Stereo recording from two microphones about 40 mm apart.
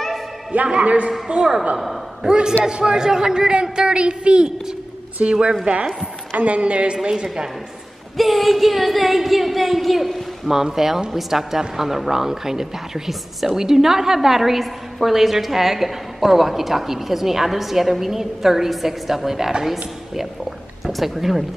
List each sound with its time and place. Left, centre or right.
0.5 s a woman's voice: right
2.2 s a woman's voice: centre
6.3 s a man's voice: right
8.2 s a sound: centre
10.5 s a woman's voice: centre